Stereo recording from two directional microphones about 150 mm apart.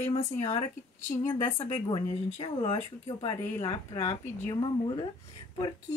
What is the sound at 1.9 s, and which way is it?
Speech, 30° left (ahead or behind).